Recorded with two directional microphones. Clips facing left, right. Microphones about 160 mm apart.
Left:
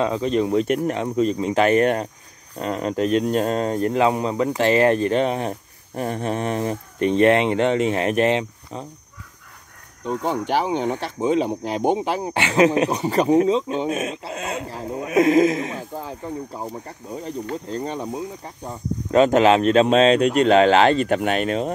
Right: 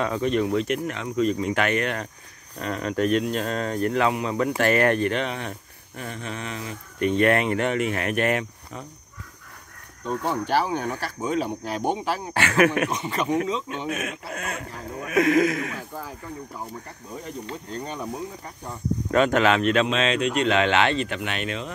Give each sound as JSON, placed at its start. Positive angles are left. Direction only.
{"t": 0.0, "sound": "speech", "side_deg": 30}
{"t": 7.0, "sound": "speech", "side_deg": 30}
{"t": 10.0, "sound": "speech", "side_deg": 15}